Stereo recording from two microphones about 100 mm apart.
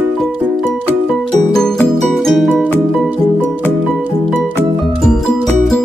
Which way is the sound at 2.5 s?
20° left (ahead or behind).